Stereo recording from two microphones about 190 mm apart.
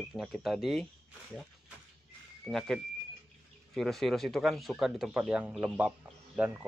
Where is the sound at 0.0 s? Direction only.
Centre (ahead or behind).